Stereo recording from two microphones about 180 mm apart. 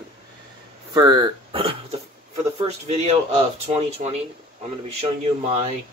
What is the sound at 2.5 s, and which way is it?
A man's voice, 35° right (ahead or behind).